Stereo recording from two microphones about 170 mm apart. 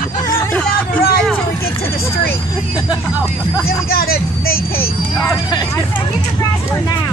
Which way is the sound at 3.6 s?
60° left (ahead or behind).